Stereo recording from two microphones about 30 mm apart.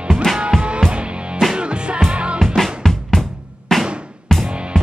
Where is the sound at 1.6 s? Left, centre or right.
Right.